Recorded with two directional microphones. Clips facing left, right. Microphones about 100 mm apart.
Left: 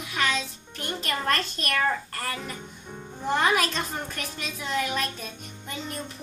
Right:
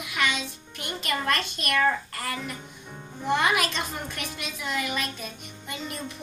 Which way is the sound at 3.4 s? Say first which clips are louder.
Left 1 dB; centre (ahead or behind).